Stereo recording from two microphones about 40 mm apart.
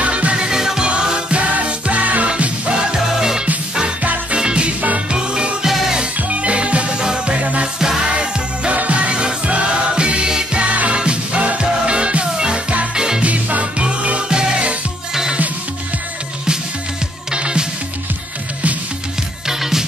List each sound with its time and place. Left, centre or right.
0.0 s music: right
0.4 s music: centre
1.6 s music: right
2.9 s music: centre
4.0 s music: right
4.4 s music: right
6.1 s music: right
7.0 s music: centre
8.1 s music: right
10.7 s music: right; by 13.2 s centre
13.2 s music: right
17.3 s music: right
19.4 s music: centre